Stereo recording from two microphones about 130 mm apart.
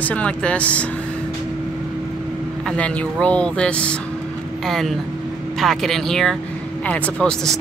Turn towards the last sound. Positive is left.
turn(degrees=5)  # may be behind; listen again after turning